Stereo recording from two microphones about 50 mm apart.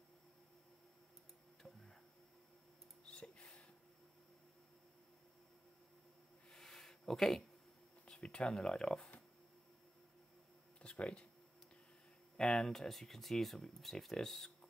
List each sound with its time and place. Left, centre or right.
1.6 s tick-tock: centre
3.1 s a sound: left
6.5 s a sound: centre
8.0 s speech: centre
10.8 s speech: left
12.4 s speech: centre